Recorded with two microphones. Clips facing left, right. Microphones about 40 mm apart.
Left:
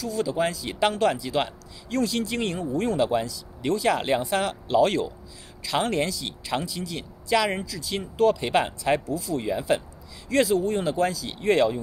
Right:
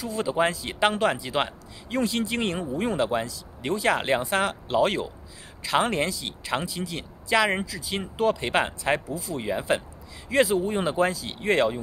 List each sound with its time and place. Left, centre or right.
0.0 s speech: right
11.4 s speech: centre